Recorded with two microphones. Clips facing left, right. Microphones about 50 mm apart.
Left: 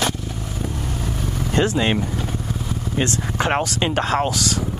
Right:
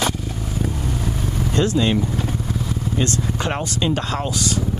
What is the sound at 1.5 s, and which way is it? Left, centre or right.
Speech, left.